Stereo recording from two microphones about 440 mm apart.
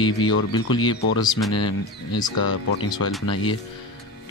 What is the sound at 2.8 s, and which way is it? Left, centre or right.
Speech, centre.